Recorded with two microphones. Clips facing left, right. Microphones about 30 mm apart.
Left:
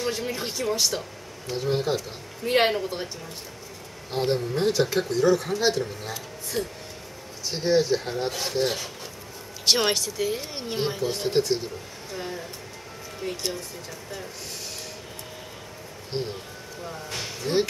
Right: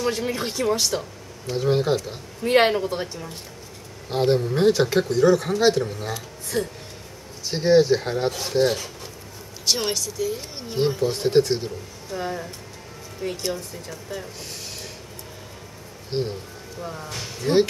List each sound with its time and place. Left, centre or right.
0.1 s speech: centre
4.6 s speech: centre
8.3 s speech: centre
9.7 s speech: left
11.0 s speech: centre
13.5 s speech: centre
16.1 s speech: right
16.8 s speech: centre